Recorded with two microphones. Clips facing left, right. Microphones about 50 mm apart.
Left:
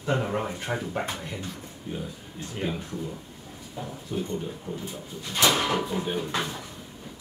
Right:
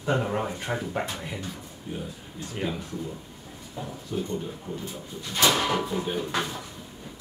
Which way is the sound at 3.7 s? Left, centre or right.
Centre.